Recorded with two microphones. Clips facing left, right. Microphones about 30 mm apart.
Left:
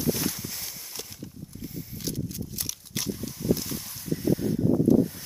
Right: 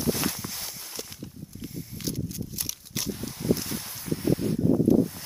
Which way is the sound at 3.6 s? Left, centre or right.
Right.